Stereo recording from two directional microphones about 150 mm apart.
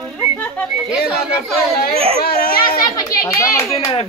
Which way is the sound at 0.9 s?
5° right (ahead or behind).